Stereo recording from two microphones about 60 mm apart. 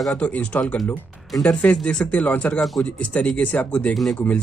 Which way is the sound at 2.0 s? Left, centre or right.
Left.